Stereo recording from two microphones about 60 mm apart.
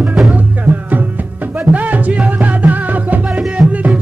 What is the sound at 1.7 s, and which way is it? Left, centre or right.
Music, right.